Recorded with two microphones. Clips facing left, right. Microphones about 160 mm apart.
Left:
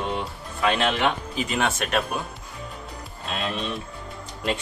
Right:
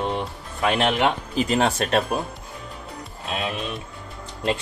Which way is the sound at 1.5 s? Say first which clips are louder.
Right 4 dB; 35° right (ahead or behind).